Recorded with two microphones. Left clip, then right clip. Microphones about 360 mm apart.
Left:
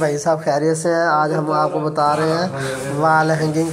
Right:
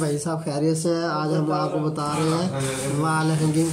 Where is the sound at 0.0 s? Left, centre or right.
Centre.